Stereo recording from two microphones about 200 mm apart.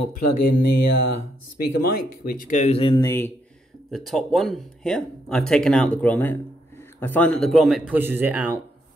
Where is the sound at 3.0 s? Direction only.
10° left (ahead or behind).